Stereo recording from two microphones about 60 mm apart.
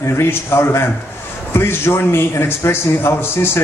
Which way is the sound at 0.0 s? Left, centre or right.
Left.